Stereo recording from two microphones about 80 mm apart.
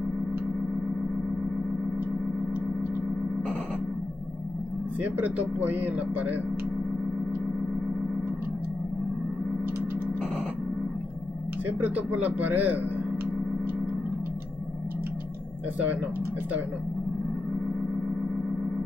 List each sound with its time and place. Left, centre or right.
5.0 s speech: right
11.8 s speech: right